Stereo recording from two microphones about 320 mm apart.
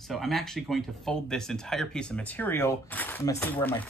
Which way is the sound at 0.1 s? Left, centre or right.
Centre.